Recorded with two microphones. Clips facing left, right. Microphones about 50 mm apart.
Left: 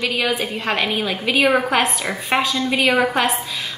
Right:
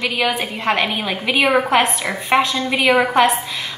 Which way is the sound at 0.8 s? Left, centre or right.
Right.